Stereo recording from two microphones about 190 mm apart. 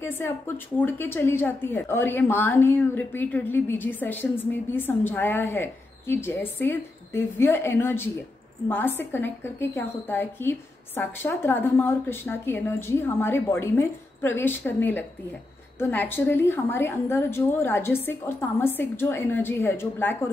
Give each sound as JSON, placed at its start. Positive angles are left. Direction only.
{"t": 0.0, "sound": "a woman's voice", "side_deg": 10}